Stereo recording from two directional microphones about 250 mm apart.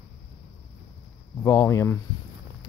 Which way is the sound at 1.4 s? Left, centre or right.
Centre.